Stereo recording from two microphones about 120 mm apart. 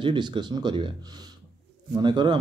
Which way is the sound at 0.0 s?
45° right (ahead or behind).